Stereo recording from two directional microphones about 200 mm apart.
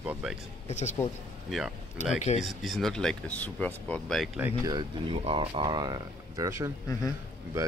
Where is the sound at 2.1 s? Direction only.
35° left (ahead or behind).